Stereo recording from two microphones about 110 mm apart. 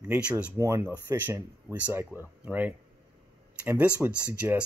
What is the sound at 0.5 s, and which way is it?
Speech, 25° right (ahead or behind).